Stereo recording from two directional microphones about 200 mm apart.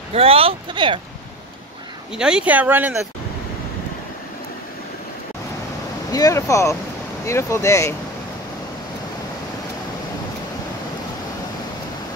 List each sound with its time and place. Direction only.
0.1 s speech: 30° right (ahead or behind)
2.1 s speech: 5° right (ahead or behind)
6.1 s speech: 15° left (ahead or behind)